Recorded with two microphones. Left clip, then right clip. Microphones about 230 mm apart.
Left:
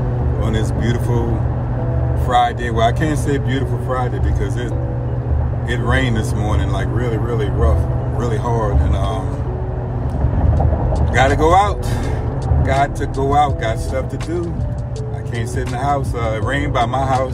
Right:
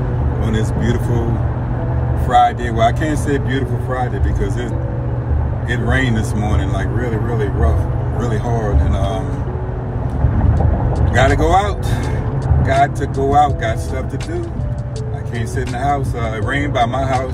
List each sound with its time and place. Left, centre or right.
0.5 s speech: centre
2.2 s speech: centre
5.7 s speech: centre
8.2 s speech: centre
11.1 s speech: centre
15.8 s speech: centre